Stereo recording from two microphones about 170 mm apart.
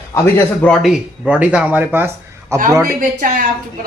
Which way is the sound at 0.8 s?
5° right (ahead or behind).